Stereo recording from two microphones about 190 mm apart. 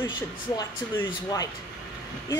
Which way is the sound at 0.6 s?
20° left (ahead or behind).